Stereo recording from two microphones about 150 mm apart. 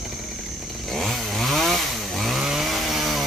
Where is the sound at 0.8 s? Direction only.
Centre (ahead or behind).